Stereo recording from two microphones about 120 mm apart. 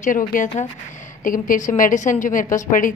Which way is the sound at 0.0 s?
90° left.